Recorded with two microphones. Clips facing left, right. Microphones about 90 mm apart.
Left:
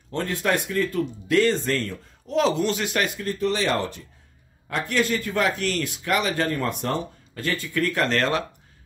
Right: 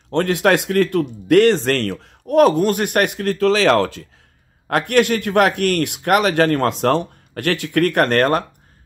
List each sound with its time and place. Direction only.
0.1 s speech: 70° right (ahead or behind); by 4.1 s 90° right
4.6 s speech: 65° right (ahead or behind)